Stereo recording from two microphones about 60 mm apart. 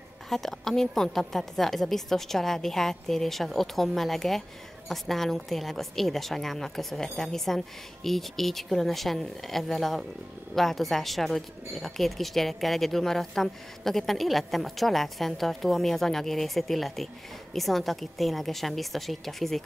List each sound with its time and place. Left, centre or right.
0.3 s speech: centre